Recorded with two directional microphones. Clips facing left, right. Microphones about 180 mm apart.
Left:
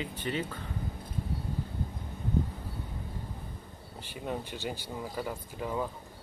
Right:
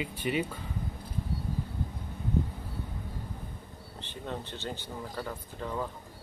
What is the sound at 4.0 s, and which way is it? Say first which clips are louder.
Speech: left 2 dB; 10° left (ahead or behind).